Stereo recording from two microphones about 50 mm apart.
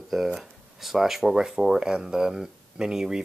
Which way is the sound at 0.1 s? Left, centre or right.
Centre.